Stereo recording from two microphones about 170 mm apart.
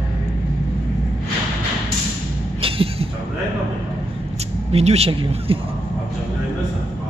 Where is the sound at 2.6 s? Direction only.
35° right (ahead or behind).